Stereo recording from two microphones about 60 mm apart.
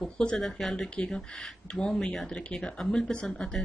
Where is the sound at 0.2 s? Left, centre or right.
Centre.